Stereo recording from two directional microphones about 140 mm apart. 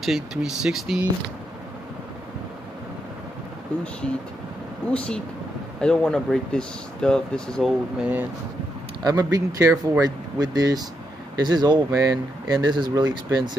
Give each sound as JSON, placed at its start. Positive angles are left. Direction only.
{"t": 0.0, "sound": "speech", "side_deg": -5}
{"t": 4.9, "sound": "speech", "side_deg": 5}
{"t": 8.0, "sound": "speech", "side_deg": -10}
{"t": 9.0, "sound": "speech", "side_deg": -25}